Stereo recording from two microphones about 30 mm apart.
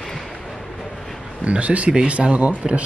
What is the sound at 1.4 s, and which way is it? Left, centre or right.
Speech, right.